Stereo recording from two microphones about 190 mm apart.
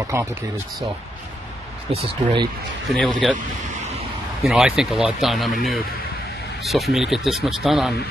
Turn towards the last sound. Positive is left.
turn(degrees=0)  # may be behind; listen again after turning